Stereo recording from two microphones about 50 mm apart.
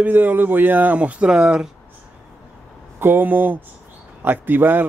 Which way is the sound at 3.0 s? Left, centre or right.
Right.